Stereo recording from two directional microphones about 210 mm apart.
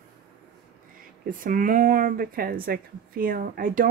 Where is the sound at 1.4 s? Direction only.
40° right (ahead or behind).